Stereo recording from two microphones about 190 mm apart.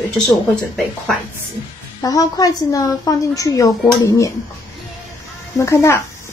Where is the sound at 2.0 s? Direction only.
20° left (ahead or behind).